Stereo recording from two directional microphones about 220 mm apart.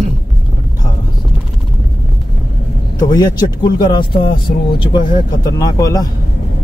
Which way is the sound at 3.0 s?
20° left (ahead or behind).